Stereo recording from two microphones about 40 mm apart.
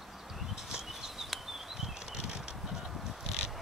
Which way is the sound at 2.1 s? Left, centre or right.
Centre.